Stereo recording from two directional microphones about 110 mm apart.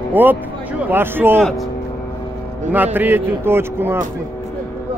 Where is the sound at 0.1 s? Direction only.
15° right (ahead or behind).